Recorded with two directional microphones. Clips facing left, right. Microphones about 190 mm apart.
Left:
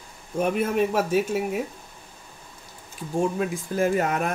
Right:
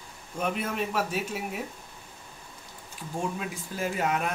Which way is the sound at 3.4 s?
50° left (ahead or behind).